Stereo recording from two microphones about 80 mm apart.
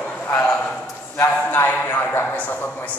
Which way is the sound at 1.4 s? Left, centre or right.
Left.